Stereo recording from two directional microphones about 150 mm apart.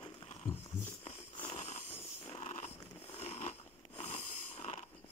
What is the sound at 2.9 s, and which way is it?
Biting, 45° left (ahead or behind).